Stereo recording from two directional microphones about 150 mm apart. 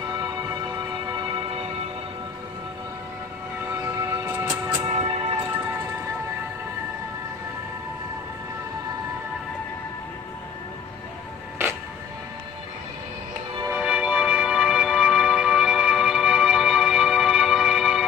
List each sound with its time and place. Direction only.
0.1 s music: 25° right (ahead or behind)
3.7 s music: 20° right (ahead or behind)
4.9 s music: 40° right (ahead or behind)
13.7 s music: 10° right (ahead or behind)